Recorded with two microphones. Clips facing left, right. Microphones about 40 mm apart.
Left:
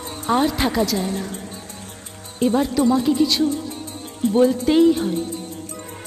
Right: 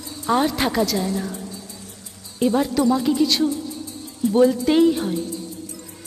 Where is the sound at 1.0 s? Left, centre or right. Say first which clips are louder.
Even; left.